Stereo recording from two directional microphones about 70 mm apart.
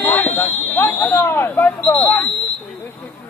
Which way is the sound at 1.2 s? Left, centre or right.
Left.